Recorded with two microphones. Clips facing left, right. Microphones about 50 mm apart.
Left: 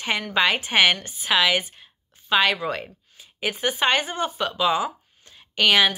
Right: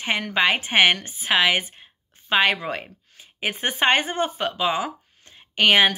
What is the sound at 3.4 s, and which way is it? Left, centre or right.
Speech, right.